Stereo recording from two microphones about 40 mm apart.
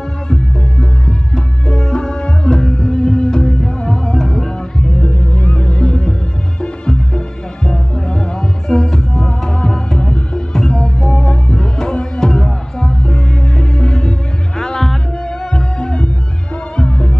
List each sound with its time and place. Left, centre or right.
0.3 s music: centre